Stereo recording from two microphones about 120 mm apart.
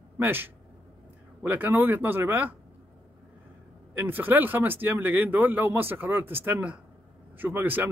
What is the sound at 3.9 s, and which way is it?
Speech, 15° right (ahead or behind).